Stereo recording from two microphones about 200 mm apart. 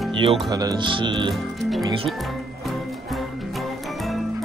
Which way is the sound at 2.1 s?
Centre (ahead or behind).